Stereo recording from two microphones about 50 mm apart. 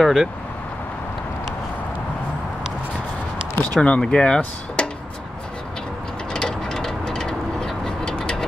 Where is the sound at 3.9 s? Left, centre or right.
Centre.